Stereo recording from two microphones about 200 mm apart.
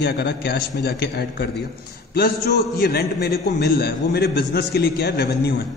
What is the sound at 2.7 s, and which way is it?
A man's voice, 50° left (ahead or behind).